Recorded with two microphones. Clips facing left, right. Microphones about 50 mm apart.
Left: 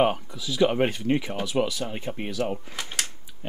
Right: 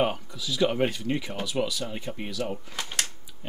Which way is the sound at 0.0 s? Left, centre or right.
Left.